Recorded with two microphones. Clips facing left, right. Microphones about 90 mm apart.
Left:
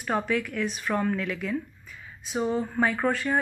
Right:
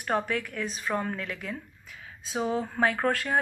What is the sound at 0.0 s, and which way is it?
Speech, 45° right (ahead or behind).